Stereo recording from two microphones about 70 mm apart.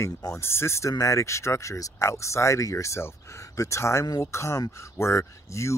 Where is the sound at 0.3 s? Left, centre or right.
Left.